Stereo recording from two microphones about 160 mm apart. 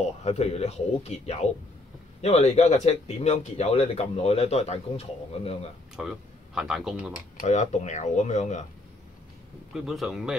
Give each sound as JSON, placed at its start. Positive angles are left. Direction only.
{"t": 0.0, "sound": "speech", "side_deg": 45}
{"t": 5.9, "sound": "speech", "side_deg": -5}
{"t": 7.2, "sound": "speech", "side_deg": 50}
{"t": 9.8, "sound": "speech", "side_deg": 0}